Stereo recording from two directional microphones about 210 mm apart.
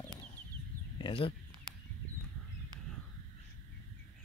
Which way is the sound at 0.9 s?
25° left (ahead or behind).